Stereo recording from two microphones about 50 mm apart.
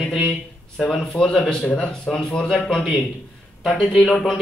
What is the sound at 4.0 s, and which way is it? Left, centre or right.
Speech, left.